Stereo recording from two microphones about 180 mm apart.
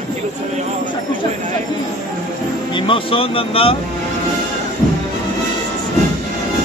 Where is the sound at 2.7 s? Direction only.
30° left (ahead or behind).